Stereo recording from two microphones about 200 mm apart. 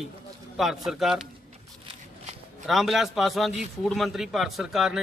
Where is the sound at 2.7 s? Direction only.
Centre (ahead or behind).